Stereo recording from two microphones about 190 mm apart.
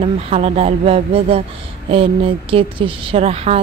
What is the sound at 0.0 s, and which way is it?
Speech, 35° right (ahead or behind).